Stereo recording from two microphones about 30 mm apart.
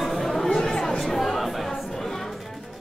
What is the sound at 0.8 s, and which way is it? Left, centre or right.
Music, centre.